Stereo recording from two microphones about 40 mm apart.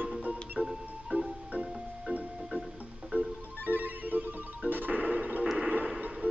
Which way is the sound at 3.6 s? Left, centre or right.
Right.